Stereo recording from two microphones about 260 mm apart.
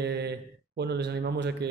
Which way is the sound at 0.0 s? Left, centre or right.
Right.